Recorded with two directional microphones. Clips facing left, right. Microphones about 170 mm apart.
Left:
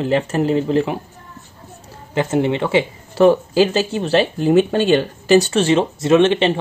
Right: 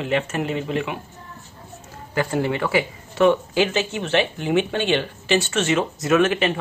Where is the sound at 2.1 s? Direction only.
20° left (ahead or behind).